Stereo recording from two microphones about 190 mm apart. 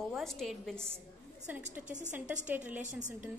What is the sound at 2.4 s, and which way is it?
Speech, 10° right (ahead or behind).